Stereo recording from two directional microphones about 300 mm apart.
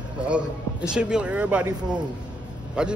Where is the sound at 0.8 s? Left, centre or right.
Centre.